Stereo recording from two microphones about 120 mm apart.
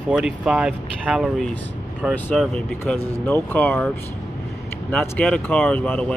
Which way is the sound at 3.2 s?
15° left (ahead or behind).